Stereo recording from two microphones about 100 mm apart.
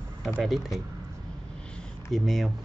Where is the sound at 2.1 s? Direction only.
Centre (ahead or behind).